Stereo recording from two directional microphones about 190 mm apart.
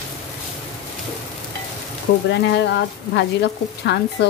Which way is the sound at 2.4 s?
65° left (ahead or behind).